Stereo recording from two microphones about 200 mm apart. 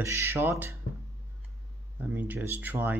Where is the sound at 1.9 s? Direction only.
5° right (ahead or behind).